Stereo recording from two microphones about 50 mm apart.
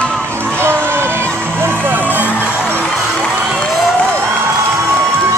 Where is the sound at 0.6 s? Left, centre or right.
Right.